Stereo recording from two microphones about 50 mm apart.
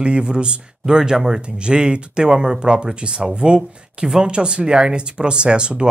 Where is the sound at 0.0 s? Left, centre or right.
Right.